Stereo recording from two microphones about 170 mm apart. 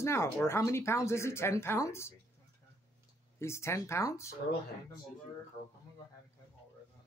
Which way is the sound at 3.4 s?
15° left (ahead or behind).